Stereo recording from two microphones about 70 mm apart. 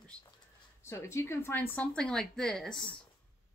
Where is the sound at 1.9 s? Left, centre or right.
Centre.